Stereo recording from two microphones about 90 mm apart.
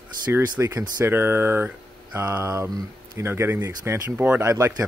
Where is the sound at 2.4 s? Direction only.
35° right (ahead or behind).